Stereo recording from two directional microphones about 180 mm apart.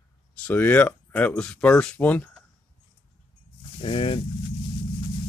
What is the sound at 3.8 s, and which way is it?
Speech, 30° left (ahead or behind).